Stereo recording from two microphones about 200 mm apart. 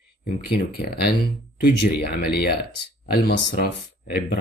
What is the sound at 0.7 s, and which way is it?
Speech, 55° left (ahead or behind).